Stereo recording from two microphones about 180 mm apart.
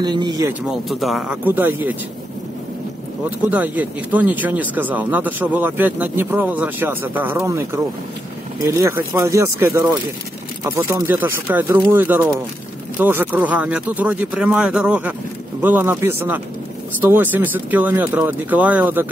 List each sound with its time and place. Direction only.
0.0 s speech: 25° right (ahead or behind)
0.5 s speech: centre (ahead or behind)
3.3 s speech: 10° right (ahead or behind)